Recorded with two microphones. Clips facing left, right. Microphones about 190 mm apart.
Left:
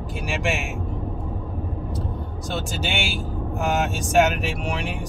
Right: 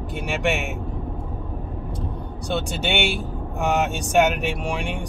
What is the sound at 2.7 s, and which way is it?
Speech, centre (ahead or behind).